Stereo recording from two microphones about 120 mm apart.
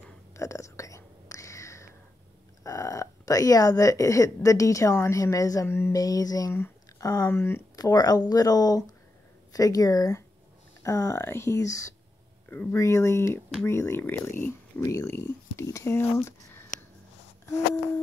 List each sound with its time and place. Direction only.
0.3 s whispering: 25° left (ahead or behind)
2.6 s speech: 25° left (ahead or behind)